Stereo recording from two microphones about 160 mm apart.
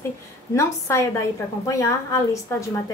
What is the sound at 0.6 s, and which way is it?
A woman's voice, 15° left (ahead or behind).